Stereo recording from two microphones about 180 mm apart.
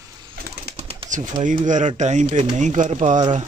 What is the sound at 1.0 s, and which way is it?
Speech, 45° right (ahead or behind).